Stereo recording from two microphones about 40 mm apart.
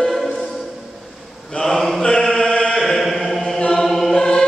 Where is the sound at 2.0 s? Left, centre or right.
Left.